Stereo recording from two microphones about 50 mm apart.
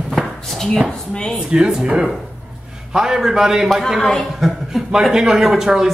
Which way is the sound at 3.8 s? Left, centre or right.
Centre.